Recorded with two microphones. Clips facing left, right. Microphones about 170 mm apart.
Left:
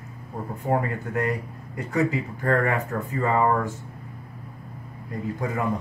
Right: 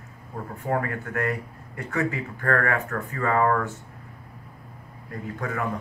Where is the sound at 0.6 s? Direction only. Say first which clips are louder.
Left 2 dB; 20° left (ahead or behind).